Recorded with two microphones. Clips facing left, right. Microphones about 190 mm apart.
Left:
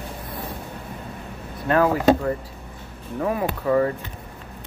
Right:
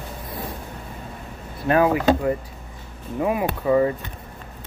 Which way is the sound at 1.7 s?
15° right (ahead or behind).